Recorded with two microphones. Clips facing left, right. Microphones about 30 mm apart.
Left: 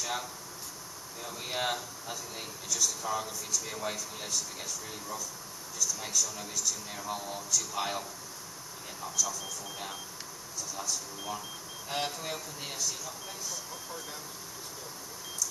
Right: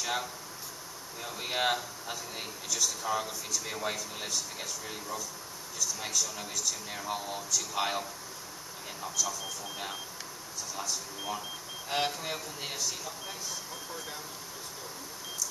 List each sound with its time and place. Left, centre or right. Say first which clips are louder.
0.0 s speech: right 2 dB; centre